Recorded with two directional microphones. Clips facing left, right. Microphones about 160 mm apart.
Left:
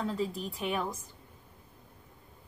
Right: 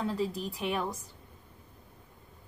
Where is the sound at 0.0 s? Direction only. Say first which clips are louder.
Right 1 dB; centre (ahead or behind).